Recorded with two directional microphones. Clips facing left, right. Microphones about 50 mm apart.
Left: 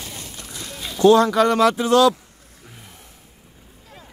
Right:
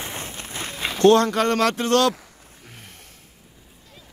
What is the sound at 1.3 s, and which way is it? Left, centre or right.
Speech, right.